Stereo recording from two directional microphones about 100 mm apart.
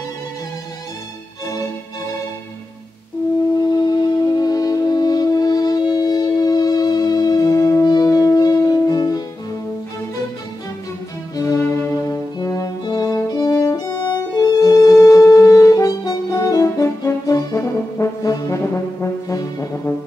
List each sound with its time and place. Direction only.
3.6 s music: 50° left (ahead or behind)
11.3 s music: 35° left (ahead or behind)
11.7 s brass instrument: 30° left (ahead or behind)
13.7 s french horn: 40° left (ahead or behind)
18.3 s brass instrument: 40° left (ahead or behind)